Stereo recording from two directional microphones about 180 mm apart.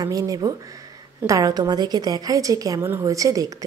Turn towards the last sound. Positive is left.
turn(degrees=-20)  # may be behind; listen again after turning